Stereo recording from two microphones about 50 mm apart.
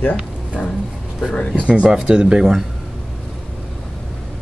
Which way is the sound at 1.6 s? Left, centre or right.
Right.